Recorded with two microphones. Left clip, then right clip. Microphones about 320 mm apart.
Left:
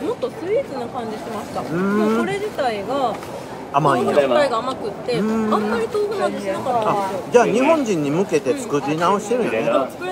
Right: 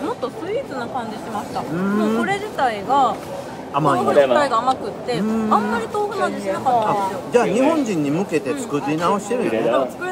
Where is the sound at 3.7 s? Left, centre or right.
Centre.